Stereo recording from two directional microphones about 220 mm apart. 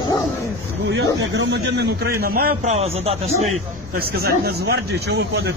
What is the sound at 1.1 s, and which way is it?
Speech, 55° right (ahead or behind).